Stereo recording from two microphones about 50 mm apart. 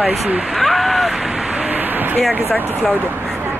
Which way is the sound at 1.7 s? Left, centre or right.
Right.